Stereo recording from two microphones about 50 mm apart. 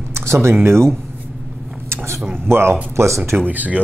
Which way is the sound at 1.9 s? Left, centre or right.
Right.